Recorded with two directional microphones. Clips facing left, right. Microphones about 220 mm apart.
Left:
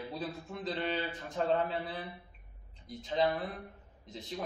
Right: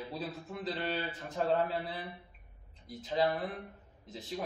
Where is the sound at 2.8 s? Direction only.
5° right (ahead or behind).